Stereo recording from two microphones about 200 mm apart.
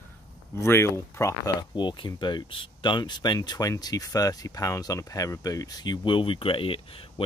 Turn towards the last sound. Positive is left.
turn(degrees=30)  # may be behind; listen again after turning